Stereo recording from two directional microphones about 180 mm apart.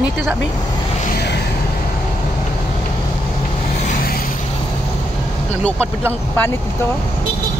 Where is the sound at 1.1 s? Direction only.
65° left (ahead or behind).